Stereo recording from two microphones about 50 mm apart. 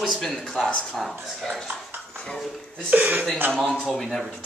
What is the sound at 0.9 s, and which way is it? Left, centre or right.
Speech, centre.